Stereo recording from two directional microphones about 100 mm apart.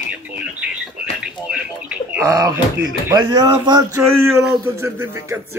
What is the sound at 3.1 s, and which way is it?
Speech, 40° right (ahead or behind).